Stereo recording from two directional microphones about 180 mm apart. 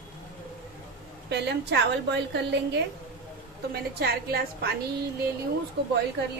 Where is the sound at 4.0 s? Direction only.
65° right (ahead or behind).